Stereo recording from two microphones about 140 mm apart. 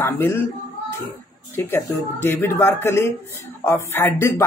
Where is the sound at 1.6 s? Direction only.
15° left (ahead or behind).